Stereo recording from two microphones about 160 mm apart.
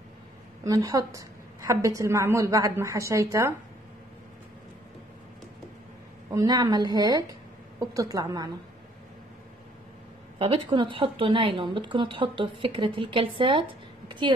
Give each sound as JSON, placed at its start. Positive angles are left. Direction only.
{"t": 0.7, "sound": "a woman's voice", "side_deg": -25}
{"t": 6.3, "sound": "a woman's voice", "side_deg": -25}
{"t": 10.4, "sound": "a woman's voice", "side_deg": -30}